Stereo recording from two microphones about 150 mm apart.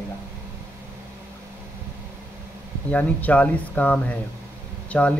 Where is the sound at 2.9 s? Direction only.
10° left (ahead or behind).